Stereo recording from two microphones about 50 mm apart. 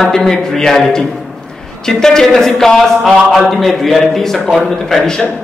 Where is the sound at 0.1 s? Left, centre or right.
Centre.